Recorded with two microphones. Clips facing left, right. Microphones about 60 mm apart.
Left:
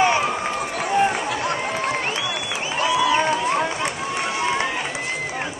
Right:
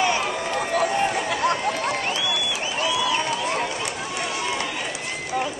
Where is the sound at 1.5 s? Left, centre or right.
Left.